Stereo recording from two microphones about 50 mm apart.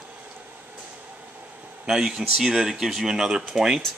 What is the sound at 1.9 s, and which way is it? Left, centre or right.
Speech, centre.